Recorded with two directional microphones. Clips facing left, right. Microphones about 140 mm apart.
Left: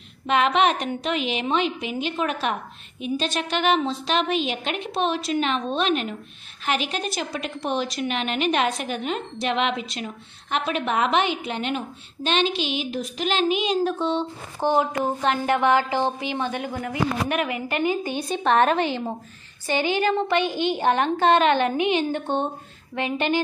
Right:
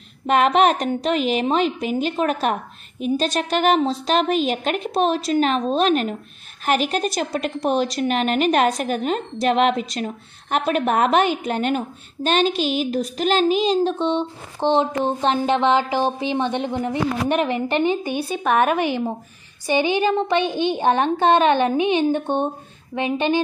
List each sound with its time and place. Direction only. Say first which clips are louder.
0.3 s a woman's voice: right 4 dB; 45° right (ahead or behind)
13.9 s speech: right 3 dB; 20° right (ahead or behind)
18.0 s a woman's voice: right 1 dB; 10° right (ahead or behind)